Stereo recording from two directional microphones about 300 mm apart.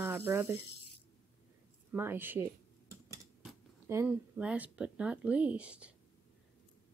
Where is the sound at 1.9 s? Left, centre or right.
Centre.